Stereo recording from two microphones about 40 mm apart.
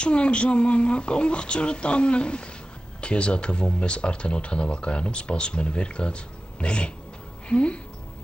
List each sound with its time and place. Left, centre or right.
0.0 s speech: left